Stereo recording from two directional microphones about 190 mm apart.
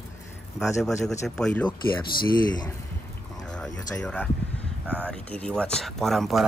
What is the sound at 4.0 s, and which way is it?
Speech, 5° left (ahead or behind).